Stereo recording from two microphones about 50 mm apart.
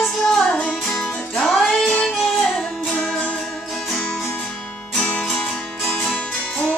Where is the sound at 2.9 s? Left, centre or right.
Centre.